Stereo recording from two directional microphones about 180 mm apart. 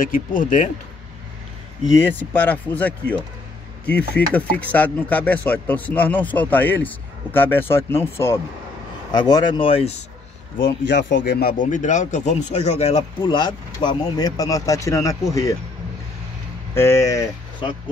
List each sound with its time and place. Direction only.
0.0 s speech: 50° left (ahead or behind)
2.0 s speech: 10° left (ahead or behind)
9.1 s speech: 25° left (ahead or behind)
10.9 s speech: 85° left; by 15.5 s 20° left (ahead or behind)
16.7 s speech: 15° left (ahead or behind)